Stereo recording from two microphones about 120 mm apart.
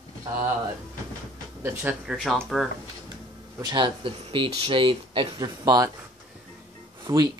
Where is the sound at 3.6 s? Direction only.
40° right (ahead or behind).